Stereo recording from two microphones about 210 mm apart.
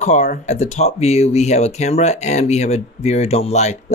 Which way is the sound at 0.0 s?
35° left (ahead or behind).